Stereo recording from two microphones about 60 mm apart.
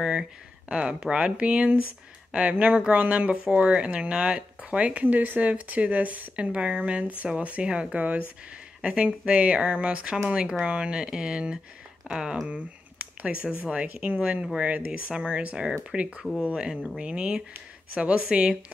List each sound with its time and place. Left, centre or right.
0.0 s speech: centre
12.4 s a sound: right
13.7 s speech: centre